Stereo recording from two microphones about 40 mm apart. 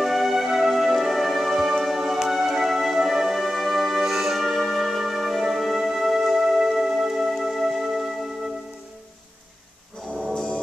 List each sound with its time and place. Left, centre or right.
0.0 s music: centre
10.3 s music: centre